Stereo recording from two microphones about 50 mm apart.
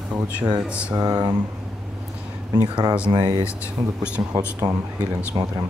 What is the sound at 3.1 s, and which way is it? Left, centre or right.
Speech, right.